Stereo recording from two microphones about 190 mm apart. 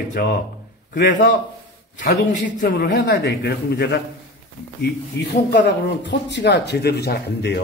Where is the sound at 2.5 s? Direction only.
45° left (ahead or behind).